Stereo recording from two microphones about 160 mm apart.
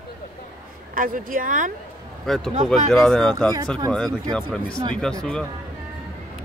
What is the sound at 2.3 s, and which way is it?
Speech, centre (ahead or behind).